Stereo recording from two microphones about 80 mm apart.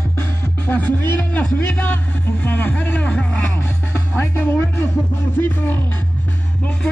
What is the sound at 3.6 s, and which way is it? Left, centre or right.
Music, left.